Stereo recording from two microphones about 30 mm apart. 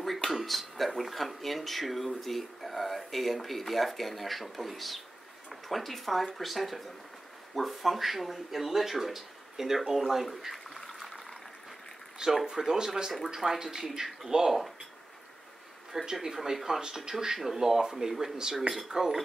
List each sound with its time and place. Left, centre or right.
0.0 s speech: centre
11.0 s a sound: centre
12.2 s speech: right
16.1 s speech: centre
16.3 s speech: centre